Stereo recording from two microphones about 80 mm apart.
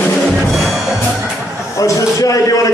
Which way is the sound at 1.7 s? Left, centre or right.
Left.